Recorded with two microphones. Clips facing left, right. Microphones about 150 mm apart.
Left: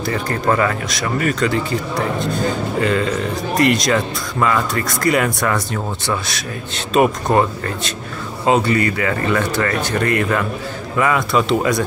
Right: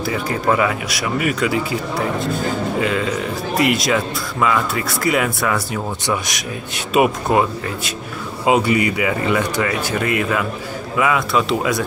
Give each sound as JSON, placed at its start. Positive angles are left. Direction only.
{"t": 0.0, "sound": "speech", "side_deg": -5}
{"t": 6.0, "sound": "speech", "side_deg": -15}